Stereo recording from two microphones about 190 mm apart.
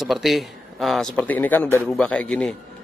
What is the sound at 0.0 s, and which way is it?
A man's voice, centre (ahead or behind).